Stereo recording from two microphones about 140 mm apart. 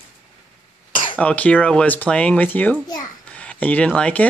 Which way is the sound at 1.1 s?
10° left (ahead or behind).